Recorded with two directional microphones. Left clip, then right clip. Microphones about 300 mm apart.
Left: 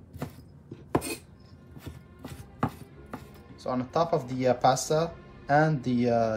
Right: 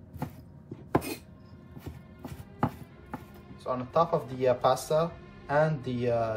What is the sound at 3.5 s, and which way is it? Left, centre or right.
Speech, left.